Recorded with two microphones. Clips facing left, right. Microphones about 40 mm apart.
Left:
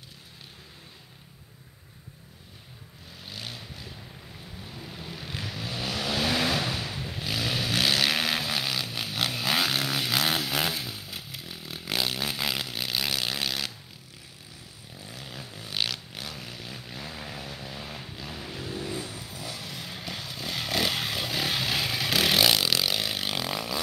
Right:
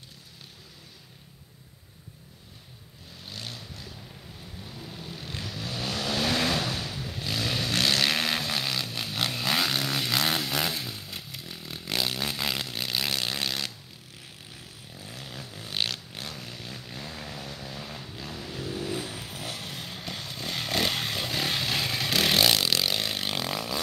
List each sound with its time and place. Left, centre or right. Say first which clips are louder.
3.3 s vehicle: even; centre
15.0 s vehicle: even; centre
18.9 s vehicle: right 1 dB; right
19.9 s motorcycle: even; centre